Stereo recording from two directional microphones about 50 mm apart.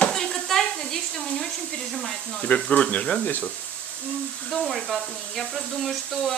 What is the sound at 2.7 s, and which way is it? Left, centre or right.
Speech, left.